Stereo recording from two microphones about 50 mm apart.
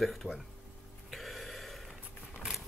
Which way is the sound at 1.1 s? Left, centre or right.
Centre.